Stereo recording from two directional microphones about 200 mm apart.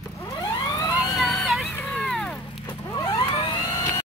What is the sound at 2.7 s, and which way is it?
Vehicle, 20° left (ahead or behind).